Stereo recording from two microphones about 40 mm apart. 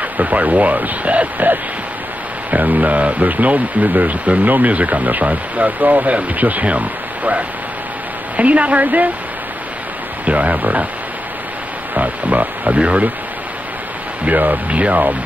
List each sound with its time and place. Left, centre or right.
0.2 s speech: right
8.4 s speech: right
10.2 s speech: right
11.9 s speech: right
12.7 s speech: right
14.3 s speech: right
14.7 s speech: right